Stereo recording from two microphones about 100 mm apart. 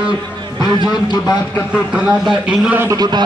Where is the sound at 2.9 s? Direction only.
45° right (ahead or behind).